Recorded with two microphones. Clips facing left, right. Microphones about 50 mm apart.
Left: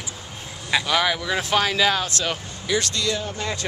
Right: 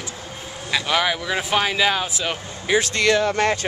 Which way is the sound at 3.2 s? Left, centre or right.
Right.